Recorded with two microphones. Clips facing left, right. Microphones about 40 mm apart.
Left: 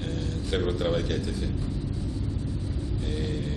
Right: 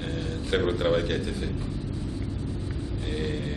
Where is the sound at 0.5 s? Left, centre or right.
Centre.